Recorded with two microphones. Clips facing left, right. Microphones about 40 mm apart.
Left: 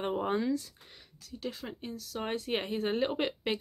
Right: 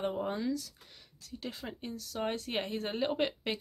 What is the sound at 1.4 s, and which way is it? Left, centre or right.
Speech, centre.